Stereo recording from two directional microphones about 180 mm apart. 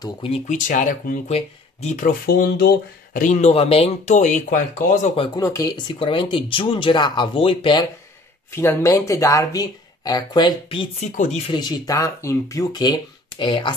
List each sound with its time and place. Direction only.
0.0 s speech: 30° left (ahead or behind)
0.5 s speech: 45° left (ahead or behind)
5.1 s speech: 30° left (ahead or behind)
5.4 s speech: 15° left (ahead or behind)
8.5 s speech: 15° left (ahead or behind); by 11.1 s 30° left (ahead or behind)
11.1 s speech: 40° left (ahead or behind)
11.5 s speech: 20° left (ahead or behind)